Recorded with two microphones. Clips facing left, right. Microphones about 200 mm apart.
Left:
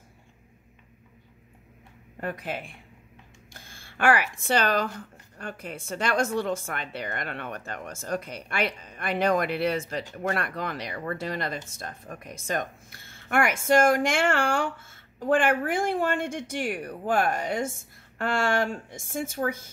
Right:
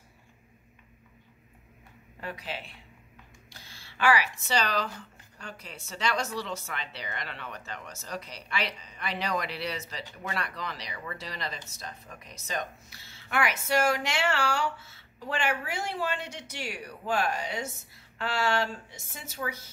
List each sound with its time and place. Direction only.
2.1 s speech: 50° left (ahead or behind)